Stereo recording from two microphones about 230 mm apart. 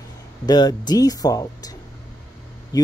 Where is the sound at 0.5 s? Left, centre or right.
Centre.